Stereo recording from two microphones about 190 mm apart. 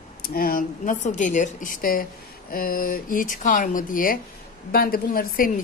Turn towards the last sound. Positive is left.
turn(degrees=45)  # may be behind; listen again after turning